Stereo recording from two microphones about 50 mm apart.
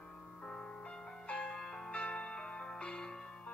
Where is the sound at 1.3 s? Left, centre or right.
Left.